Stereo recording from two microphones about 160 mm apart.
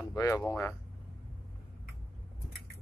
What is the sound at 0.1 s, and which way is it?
Speech, 15° left (ahead or behind).